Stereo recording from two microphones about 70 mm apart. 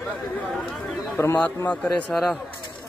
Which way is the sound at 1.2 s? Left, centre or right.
Left.